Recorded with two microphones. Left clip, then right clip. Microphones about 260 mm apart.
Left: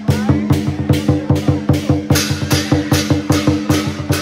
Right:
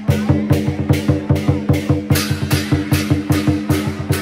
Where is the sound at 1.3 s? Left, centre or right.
Centre.